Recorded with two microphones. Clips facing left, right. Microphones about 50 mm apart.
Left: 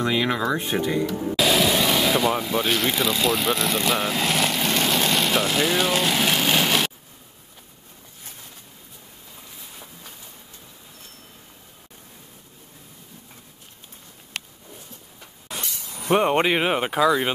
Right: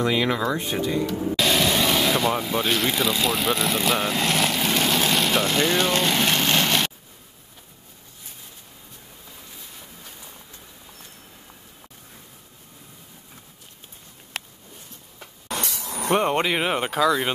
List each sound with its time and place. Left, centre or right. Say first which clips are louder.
0.0 s speech: even; centre
0.7 s speech: left 1 dB; left
1.1 s vehicle: left 2 dB; centre
15.6 s a sound: right 5 dB; right
16.1 s speech: left 2 dB; centre